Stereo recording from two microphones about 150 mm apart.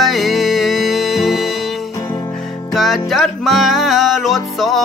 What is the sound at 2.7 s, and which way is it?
Music, centre (ahead or behind).